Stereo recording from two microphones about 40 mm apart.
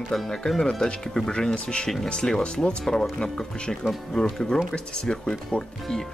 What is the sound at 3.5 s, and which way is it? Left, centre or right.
Speech, left.